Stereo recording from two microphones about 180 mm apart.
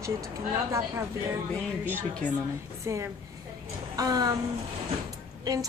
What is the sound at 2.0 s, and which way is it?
Speech, 10° left (ahead or behind).